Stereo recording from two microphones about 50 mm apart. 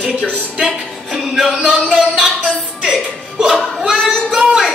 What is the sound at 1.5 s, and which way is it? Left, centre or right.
Music, centre.